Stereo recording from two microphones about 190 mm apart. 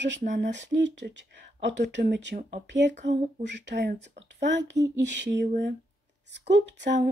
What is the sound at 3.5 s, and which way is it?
Speech, 65° right (ahead or behind).